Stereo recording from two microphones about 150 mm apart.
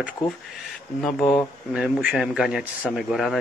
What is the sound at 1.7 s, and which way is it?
A man's voice, 5° right (ahead or behind).